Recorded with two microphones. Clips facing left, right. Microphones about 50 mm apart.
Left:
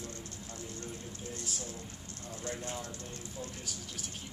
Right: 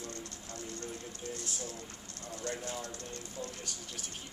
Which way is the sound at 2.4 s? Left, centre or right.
Centre.